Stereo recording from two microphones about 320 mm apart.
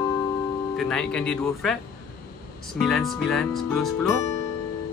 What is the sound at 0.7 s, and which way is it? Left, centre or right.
Speech, centre.